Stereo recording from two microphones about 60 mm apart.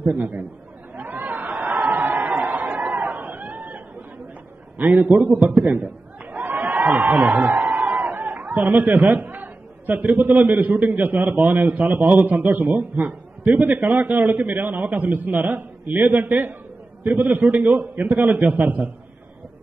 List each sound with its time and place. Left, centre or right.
0.2 s a man's voice: right
0.9 s chatter: right
4.7 s a man's voice: right